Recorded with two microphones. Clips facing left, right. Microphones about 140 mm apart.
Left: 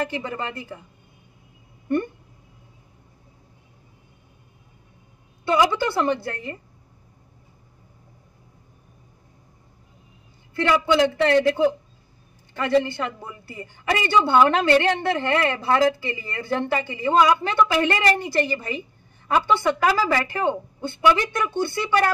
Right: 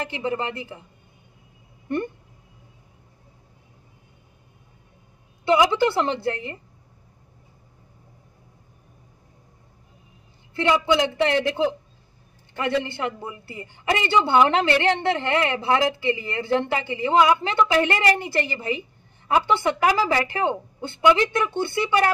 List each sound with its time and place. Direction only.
0.0 s a woman's voice: 20° right (ahead or behind)
5.5 s a woman's voice: 20° right (ahead or behind)
10.5 s a woman's voice: 20° right (ahead or behind)